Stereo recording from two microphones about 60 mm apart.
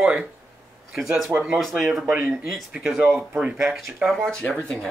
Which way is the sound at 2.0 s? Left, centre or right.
Right.